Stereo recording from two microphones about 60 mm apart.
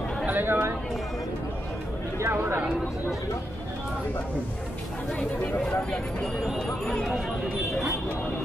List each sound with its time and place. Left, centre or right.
0.2 s chatter: right
2.1 s speech: right
5.7 s speech: centre
6.4 s speech: centre